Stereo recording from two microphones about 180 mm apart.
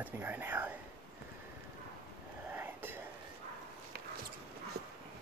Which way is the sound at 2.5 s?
10° right (ahead or behind).